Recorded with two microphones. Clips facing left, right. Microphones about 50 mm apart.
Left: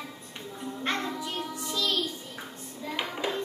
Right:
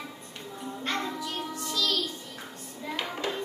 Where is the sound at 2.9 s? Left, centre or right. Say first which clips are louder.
Left 1 dB; centre.